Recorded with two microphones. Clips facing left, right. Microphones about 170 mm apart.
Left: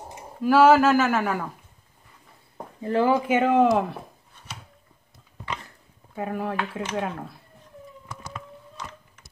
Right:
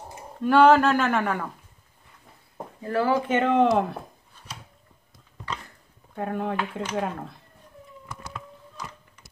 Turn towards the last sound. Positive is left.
turn(degrees=0)  # may be behind; listen again after turning